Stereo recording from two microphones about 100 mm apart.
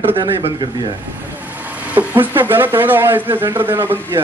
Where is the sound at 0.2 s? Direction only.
45° right (ahead or behind).